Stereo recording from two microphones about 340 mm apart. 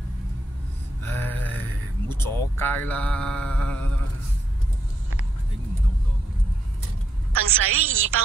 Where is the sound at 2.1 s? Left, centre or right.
Centre.